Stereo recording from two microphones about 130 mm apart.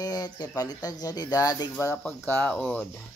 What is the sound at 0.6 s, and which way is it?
Speech, 30° left (ahead or behind).